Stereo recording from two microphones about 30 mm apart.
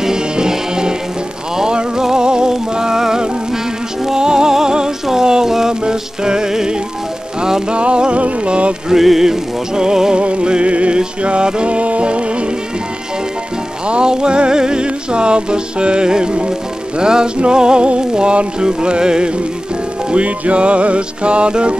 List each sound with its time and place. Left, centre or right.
0.0 s music: centre
1.6 s rain on surface: right
2.0 s music: right
5.2 s a sound: right
5.5 s music: right
7.7 s music: right
9.2 s music: right
10.1 s music: right
11.7 s music: right
13.8 s music: right
20.2 s music: right